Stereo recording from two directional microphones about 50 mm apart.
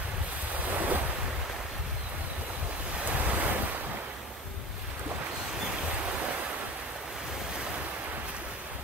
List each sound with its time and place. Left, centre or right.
0.7 s waves: right
3.0 s waves: right